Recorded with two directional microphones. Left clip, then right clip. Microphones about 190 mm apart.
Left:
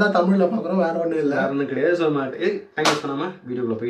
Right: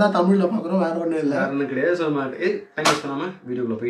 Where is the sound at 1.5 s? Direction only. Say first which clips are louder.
Left 1 dB; 15° left (ahead or behind).